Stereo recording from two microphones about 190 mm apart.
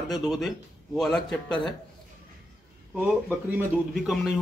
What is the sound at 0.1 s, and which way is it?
A man's voice, centre (ahead or behind).